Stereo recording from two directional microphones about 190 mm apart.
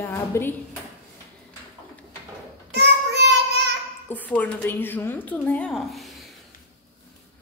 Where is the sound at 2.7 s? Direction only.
60° right (ahead or behind).